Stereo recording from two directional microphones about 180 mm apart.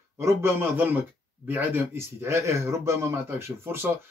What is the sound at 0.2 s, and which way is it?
A man's voice, 15° right (ahead or behind).